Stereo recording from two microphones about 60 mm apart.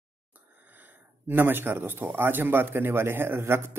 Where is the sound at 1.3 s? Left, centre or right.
Right.